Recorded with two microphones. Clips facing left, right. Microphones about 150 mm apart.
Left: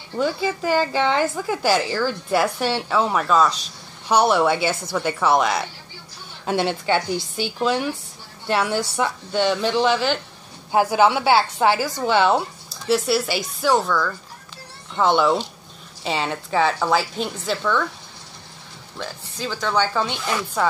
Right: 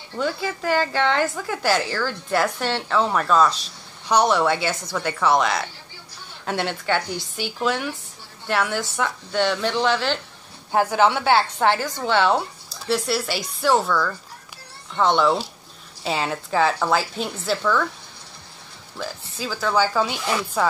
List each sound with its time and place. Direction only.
0.2 s a woman's voice: 15° left (ahead or behind); by 17.8 s centre (ahead or behind)
18.9 s a woman's voice: 5° right (ahead or behind)